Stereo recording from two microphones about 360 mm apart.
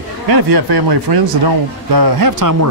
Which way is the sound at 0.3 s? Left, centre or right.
Right.